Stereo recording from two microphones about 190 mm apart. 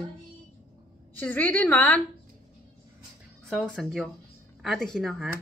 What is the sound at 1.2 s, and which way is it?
Speech, 10° left (ahead or behind).